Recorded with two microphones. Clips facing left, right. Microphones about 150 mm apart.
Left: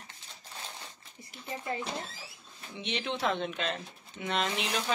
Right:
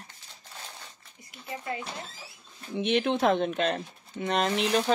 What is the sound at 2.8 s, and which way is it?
Speech, 55° right (ahead or behind).